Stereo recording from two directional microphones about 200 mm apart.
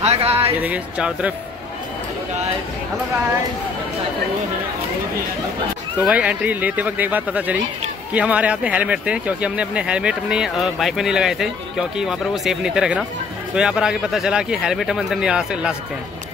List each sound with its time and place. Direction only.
0.0 s speech: 30° right (ahead or behind)
0.6 s speech: 5° right (ahead or behind)
6.0 s speech: 5° right (ahead or behind)